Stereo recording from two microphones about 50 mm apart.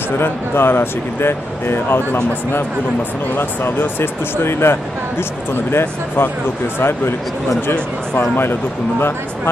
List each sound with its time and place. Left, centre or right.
0.2 s speech: left
3.3 s speech: left
8.2 s speech: left